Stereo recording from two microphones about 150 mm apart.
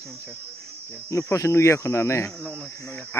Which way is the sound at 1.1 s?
20° left (ahead or behind).